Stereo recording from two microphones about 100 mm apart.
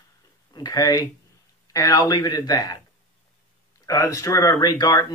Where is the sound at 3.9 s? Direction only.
35° left (ahead or behind).